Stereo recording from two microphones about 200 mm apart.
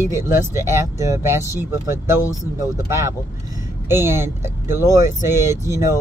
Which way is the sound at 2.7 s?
15° right (ahead or behind).